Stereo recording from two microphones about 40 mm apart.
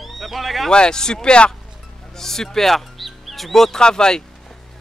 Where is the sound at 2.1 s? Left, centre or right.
Centre.